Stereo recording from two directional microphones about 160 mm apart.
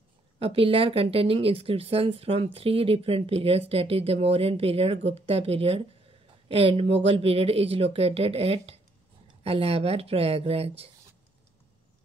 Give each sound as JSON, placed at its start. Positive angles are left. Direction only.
{"t": 0.4, "sound": "speech", "side_deg": -35}